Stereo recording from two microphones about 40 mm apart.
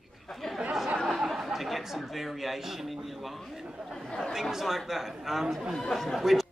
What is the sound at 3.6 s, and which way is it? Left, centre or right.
A man's voice, centre.